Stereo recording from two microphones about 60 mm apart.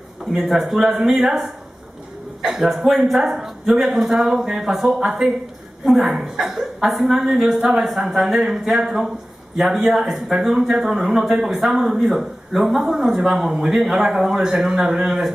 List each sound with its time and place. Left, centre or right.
0.2 s speech: centre